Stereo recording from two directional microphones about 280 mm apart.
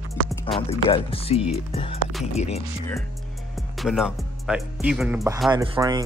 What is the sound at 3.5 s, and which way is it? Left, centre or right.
Speech, centre.